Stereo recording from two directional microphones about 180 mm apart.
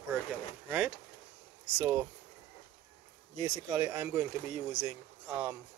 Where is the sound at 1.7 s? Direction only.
15° right (ahead or behind).